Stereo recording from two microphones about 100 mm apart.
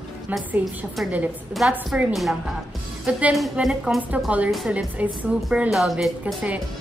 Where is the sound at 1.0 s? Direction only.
Centre (ahead or behind).